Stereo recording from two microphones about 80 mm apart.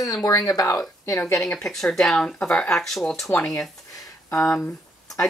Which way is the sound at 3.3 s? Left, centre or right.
Left.